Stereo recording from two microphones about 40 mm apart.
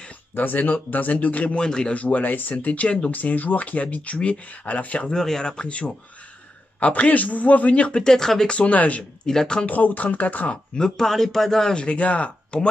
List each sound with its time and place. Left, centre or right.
0.4 s speech: left
1.6 s speech: left
2.0 s speech: left
5.1 s speech: centre; by 8.0 s left
8.0 s speech: centre
8.5 s speech: left
9.2 s speech: centre
9.7 s speech: left
11.0 s speech: centre
11.7 s speech: left